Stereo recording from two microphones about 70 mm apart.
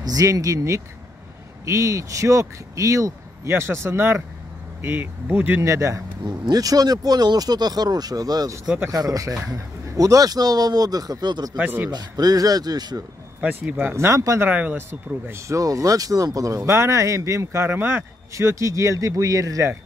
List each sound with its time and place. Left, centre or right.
0.0 s speech: right
5.6 s speech: right
6.2 s speech: right
11.9 s speech: right
13.4 s speech: right
13.9 s speech: right
14.5 s speech: right
18.3 s speech: right